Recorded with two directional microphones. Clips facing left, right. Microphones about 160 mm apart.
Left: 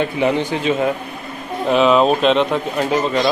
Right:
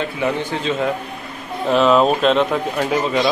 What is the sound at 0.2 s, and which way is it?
Speech, 15° left (ahead or behind).